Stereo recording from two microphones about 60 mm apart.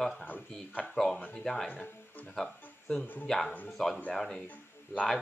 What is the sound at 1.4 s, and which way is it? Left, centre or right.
Speech, centre.